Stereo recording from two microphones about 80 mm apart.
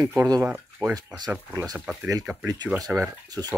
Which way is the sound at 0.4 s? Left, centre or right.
Centre.